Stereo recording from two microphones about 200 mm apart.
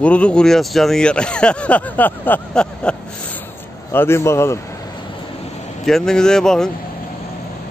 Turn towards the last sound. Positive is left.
turn(degrees=5)  # may be behind; listen again after turning